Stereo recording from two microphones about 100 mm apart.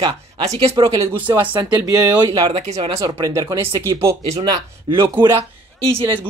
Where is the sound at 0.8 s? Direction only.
35° right (ahead or behind).